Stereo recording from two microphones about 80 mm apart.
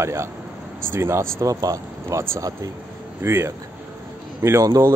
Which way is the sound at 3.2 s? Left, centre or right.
Right.